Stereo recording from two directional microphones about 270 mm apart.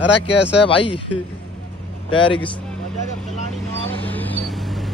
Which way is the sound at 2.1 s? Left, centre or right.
Centre.